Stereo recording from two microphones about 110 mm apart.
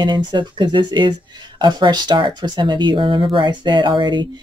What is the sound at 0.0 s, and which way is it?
Speech, 45° right (ahead or behind).